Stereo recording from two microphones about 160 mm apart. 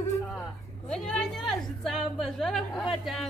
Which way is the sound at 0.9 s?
5° left (ahead or behind).